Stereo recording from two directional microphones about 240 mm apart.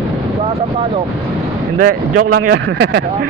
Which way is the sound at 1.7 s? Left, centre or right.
Right.